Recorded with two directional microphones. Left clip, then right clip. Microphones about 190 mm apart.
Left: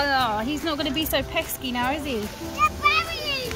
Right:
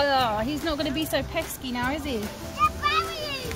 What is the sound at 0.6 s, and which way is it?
Speech, 10° right (ahead or behind).